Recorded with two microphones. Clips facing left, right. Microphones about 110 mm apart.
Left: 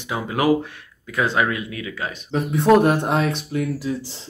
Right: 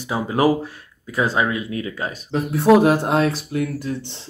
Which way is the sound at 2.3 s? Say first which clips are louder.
Right 1 dB; centre (ahead or behind).